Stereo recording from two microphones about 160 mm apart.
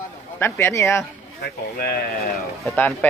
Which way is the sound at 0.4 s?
15° left (ahead or behind).